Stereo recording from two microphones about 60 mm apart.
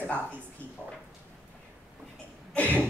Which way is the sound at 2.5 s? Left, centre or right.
Left.